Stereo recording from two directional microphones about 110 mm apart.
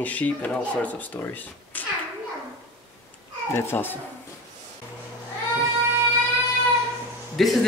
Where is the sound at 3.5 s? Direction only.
20° left (ahead or behind).